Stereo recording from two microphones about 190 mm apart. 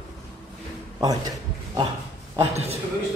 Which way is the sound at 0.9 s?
20° right (ahead or behind).